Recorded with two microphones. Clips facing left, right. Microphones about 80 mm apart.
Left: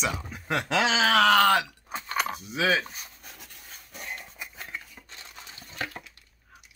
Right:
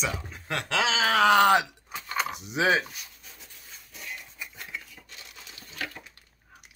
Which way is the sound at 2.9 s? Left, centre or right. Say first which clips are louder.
Left 2 dB; left.